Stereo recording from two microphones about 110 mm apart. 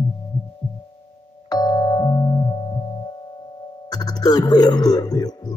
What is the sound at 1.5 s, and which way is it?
Music, 35° left (ahead or behind).